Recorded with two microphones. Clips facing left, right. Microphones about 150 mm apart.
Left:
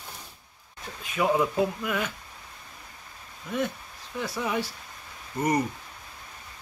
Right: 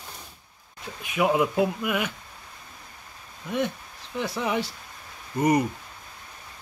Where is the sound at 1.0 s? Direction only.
15° right (ahead or behind).